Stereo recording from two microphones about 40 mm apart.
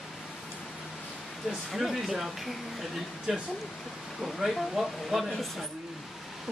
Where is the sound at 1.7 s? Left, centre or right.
Centre.